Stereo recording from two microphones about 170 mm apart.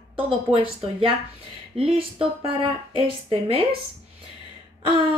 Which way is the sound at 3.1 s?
30° right (ahead or behind).